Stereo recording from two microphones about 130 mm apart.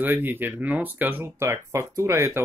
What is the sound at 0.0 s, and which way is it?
Speech, 15° right (ahead or behind).